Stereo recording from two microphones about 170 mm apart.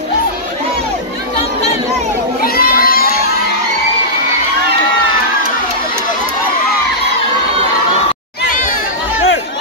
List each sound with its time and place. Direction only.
2.4 s children shouting: 60° left (ahead or behind)